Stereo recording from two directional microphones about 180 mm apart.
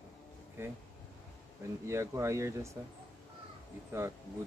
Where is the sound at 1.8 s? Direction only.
15° right (ahead or behind).